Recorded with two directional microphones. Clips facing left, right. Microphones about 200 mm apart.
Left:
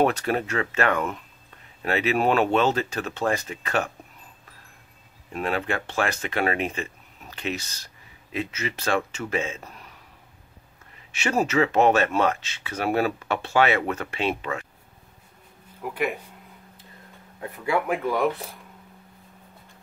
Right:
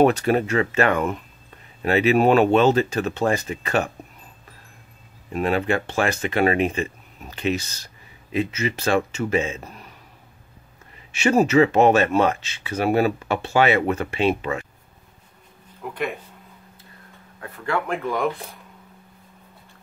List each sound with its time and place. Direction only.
0.0 s speech: 5° right (ahead or behind)
5.3 s speech: 15° right (ahead or behind)
5.9 s speech: 5° right (ahead or behind)
11.1 s speech: 5° right (ahead or behind)
15.8 s speech: 5° left (ahead or behind)
17.4 s speech: 10° left (ahead or behind)